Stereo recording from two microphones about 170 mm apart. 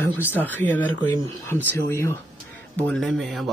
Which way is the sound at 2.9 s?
Centre (ahead or behind).